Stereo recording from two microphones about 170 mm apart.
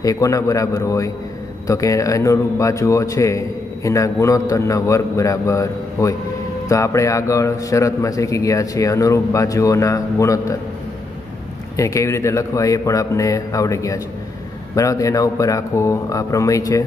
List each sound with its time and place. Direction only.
0.0 s a man's voice: 20° left (ahead or behind)
11.7 s a man's voice: 20° left (ahead or behind)